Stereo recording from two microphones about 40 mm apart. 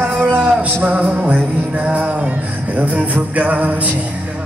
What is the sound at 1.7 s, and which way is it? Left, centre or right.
Music, right.